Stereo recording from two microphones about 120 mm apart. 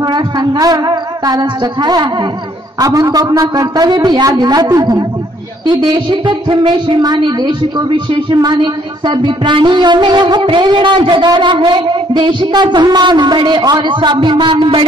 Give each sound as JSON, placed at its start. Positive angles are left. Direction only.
{"t": 0.0, "sound": "music", "side_deg": -35}